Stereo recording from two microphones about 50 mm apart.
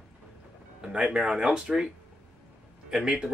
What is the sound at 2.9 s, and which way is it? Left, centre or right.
Speech, centre.